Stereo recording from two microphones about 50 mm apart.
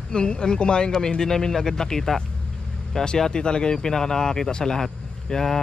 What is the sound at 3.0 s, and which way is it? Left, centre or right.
Speech, centre.